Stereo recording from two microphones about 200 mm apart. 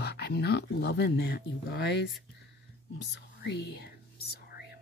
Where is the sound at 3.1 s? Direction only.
55° left (ahead or behind).